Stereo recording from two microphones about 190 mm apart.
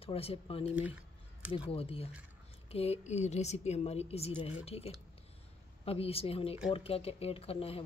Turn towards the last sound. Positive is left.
turn(degrees=30)  # may be behind; listen again after turning